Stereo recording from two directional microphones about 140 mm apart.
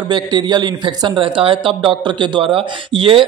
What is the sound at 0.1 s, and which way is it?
A man's voice, 30° right (ahead or behind).